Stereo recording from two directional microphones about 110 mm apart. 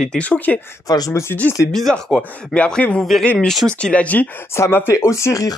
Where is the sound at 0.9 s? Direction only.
30° left (ahead or behind).